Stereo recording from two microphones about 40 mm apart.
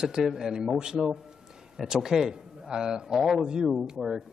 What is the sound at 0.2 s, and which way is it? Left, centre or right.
Speech, centre.